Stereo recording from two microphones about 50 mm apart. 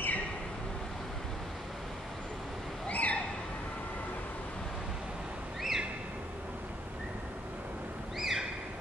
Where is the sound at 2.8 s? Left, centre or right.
Left.